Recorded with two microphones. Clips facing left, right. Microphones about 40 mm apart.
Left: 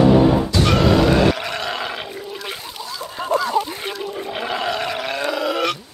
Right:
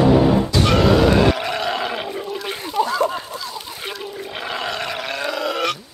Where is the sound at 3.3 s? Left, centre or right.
Left.